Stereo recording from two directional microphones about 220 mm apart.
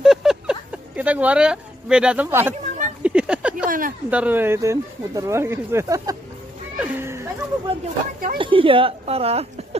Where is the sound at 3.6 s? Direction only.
40° right (ahead or behind).